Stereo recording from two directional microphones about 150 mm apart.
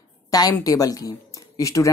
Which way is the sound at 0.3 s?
25° left (ahead or behind).